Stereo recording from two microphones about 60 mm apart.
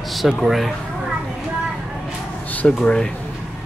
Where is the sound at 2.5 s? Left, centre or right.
Left.